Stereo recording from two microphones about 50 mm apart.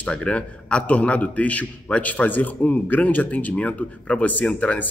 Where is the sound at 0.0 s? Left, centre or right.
Left.